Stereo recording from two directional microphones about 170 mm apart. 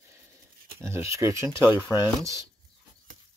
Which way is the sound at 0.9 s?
15° right (ahead or behind).